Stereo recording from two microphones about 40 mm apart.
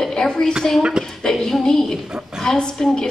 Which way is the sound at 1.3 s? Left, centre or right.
Centre.